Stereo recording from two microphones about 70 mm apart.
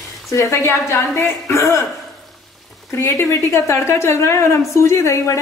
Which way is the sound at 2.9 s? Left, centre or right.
Left.